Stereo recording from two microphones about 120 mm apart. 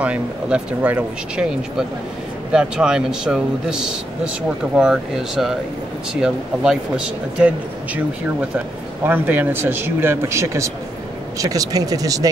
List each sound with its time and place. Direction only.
0.0 s speech: 10° right (ahead or behind)
9.0 s speech: 15° right (ahead or behind)